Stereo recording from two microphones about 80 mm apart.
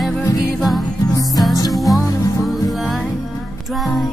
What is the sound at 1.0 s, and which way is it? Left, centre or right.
Music, left.